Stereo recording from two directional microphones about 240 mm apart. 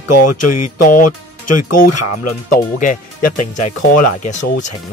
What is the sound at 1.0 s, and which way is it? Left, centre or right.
Speech, left.